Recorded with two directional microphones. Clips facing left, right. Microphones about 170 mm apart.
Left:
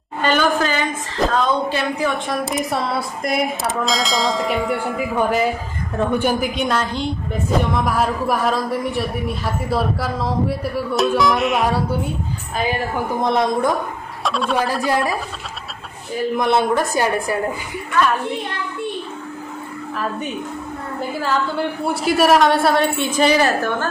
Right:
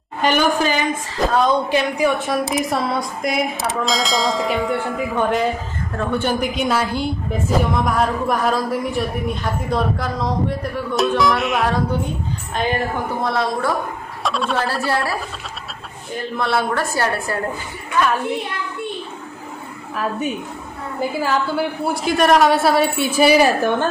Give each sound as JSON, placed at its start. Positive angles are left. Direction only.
{"t": 0.2, "sound": "a sound", "side_deg": -10}
{"t": 1.3, "sound": "a woman's voice", "side_deg": -15}
{"t": 2.2, "sound": "a woman's voice", "side_deg": 0}
{"t": 6.4, "sound": "speech", "side_deg": 0}
{"t": 13.2, "sound": "a woman's voice", "side_deg": 20}
{"t": 14.2, "sound": "speech", "side_deg": 0}
{"t": 14.7, "sound": "a woman's voice", "side_deg": 15}
{"t": 16.3, "sound": "a woman's voice", "side_deg": 15}
{"t": 21.2, "sound": "a woman's voice", "side_deg": -5}